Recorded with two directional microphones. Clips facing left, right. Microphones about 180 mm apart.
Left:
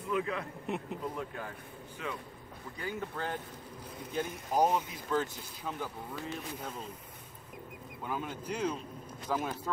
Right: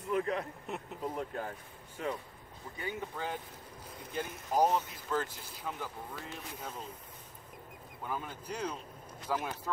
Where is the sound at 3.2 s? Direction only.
10° right (ahead or behind).